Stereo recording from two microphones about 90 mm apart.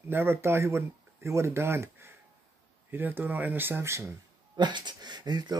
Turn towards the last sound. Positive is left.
turn(degrees=-50)  # may be behind; listen again after turning